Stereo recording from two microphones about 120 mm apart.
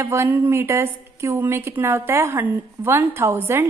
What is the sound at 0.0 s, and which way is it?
A woman's voice, 20° right (ahead or behind).